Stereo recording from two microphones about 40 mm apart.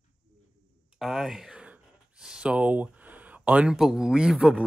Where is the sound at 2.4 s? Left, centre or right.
Right.